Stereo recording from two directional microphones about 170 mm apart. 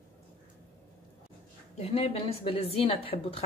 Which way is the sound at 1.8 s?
35° left (ahead or behind).